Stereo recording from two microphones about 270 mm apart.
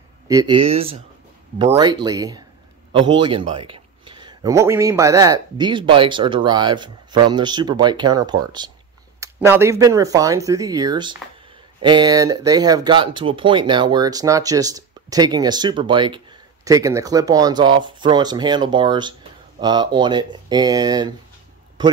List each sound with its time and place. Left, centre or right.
0.3 s speech: centre